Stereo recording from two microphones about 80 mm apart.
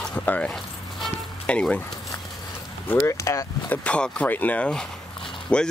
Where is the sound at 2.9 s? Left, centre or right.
Left.